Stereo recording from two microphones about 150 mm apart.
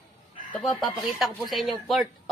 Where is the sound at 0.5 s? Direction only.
Centre (ahead or behind).